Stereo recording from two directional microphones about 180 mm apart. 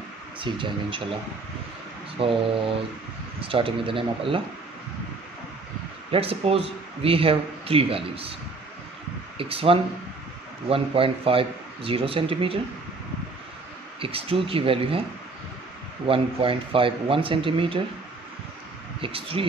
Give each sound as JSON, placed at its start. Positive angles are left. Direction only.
{"t": 0.4, "sound": "speech", "side_deg": -30}
{"t": 2.1, "sound": "speech", "side_deg": -30}
{"t": 6.1, "sound": "speech", "side_deg": -30}
{"t": 9.4, "sound": "speech", "side_deg": -30}
{"t": 13.9, "sound": "speech", "side_deg": -30}
{"t": 16.1, "sound": "speech", "side_deg": -30}
{"t": 18.9, "sound": "speech", "side_deg": -30}